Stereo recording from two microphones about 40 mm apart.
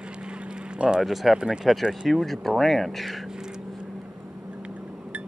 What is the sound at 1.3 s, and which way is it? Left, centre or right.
Speech, right.